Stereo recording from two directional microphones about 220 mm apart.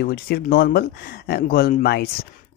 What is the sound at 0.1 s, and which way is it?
Speech, 45° left (ahead or behind).